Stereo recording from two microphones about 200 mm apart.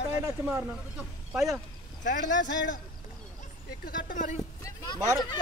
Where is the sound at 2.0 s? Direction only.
60° left (ahead or behind).